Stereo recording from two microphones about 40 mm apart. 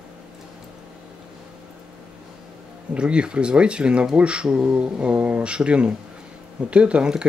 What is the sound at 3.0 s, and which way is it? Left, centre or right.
Speech, right.